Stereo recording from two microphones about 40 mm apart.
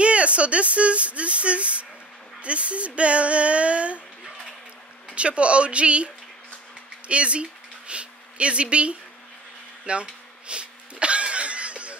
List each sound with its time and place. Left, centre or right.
0.0 s speech: right
5.1 s speech: right
7.1 s a sound: right